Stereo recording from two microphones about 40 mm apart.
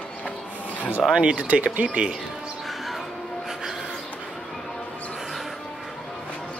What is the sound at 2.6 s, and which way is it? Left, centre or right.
Music, centre.